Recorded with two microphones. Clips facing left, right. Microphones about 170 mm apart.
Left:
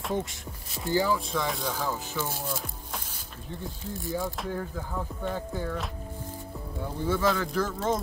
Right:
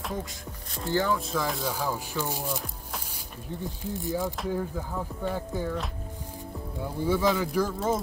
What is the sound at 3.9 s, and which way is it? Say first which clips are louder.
Speech: right 2 dB; 15° right (ahead or behind).